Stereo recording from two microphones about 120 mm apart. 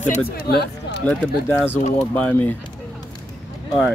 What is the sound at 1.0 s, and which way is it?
Speech, 10° left (ahead or behind).